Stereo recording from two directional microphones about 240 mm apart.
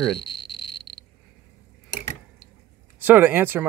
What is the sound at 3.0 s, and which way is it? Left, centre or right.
Speech, centre.